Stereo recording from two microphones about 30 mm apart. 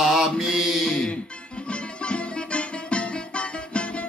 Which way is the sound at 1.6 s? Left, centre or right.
Left.